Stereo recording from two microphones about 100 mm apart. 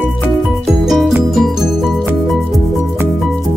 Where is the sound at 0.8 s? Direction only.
5° right (ahead or behind).